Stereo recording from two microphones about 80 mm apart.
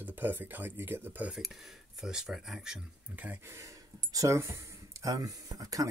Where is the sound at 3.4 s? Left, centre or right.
Right.